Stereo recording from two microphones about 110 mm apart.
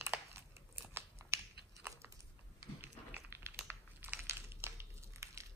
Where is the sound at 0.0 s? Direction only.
25° right (ahead or behind).